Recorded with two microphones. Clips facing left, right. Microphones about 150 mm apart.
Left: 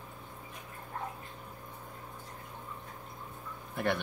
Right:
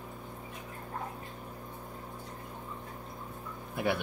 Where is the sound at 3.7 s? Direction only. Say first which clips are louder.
Right 1 dB; 5° right (ahead or behind).